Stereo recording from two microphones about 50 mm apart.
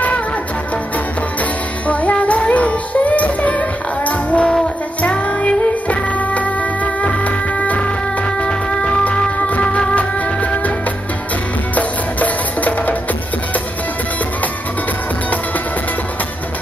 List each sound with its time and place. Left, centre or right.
1.9 s music: left
11.7 s music: left